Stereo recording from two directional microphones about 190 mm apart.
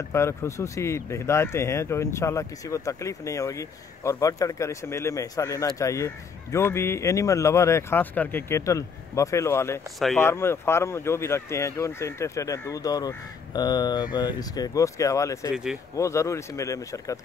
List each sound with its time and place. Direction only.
0.1 s speech: 15° left (ahead or behind)
15.5 s speech: 5° right (ahead or behind)
16.0 s speech: 15° left (ahead or behind)